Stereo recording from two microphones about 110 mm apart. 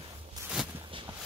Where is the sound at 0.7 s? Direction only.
50° right (ahead or behind).